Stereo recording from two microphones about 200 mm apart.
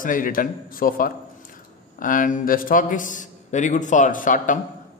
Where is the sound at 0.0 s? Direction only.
45° left (ahead or behind).